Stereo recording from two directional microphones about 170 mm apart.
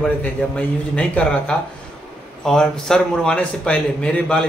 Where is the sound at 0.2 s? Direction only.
10° left (ahead or behind).